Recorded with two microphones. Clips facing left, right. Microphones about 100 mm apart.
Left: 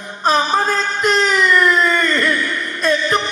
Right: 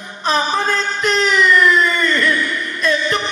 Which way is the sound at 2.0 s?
30° left (ahead or behind).